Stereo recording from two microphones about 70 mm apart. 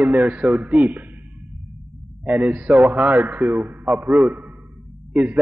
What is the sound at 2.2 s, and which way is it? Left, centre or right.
A man's voice, right.